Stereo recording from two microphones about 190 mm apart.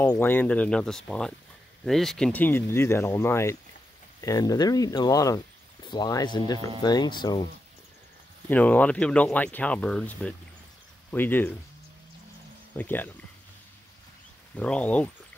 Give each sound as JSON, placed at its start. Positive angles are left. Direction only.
{"t": 0.1, "sound": "speech", "side_deg": 10}
{"t": 8.5, "sound": "speech", "side_deg": 5}
{"t": 12.7, "sound": "speech", "side_deg": 10}
{"t": 14.5, "sound": "speech", "side_deg": 5}